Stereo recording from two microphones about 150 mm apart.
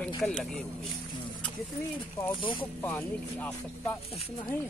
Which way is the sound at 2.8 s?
10° left (ahead or behind).